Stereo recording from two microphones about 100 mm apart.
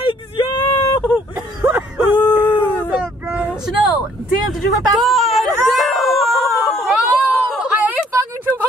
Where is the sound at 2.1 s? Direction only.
20° left (ahead or behind).